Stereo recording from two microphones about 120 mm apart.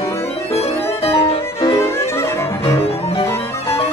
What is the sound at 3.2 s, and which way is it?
Music, 20° left (ahead or behind).